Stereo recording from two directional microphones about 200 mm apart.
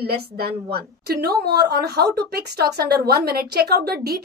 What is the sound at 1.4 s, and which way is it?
Speech, 20° right (ahead or behind).